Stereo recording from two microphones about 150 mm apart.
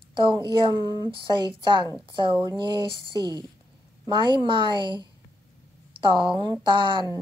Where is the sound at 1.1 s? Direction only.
30° right (ahead or behind).